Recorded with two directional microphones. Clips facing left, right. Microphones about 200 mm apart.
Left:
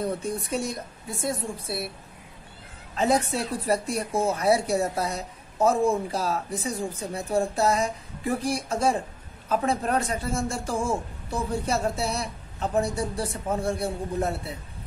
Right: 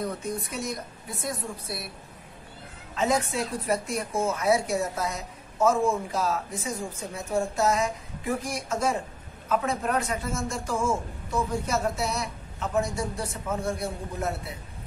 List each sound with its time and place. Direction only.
0.0 s a woman's voice: 30° left (ahead or behind)
2.9 s a man's voice: 35° left (ahead or behind)